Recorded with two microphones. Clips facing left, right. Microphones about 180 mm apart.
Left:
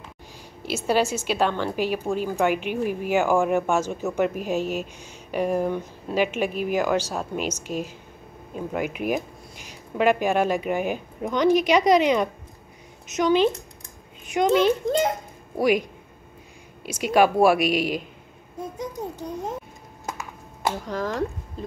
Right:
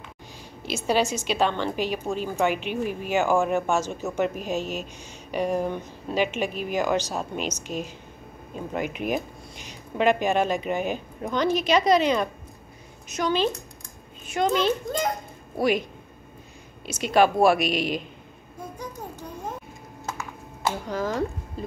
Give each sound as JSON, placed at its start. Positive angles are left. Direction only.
{"t": 0.6, "sound": "a child's voice", "side_deg": 10}
{"t": 16.8, "sound": "speech", "side_deg": 10}
{"t": 20.8, "sound": "speech", "side_deg": 0}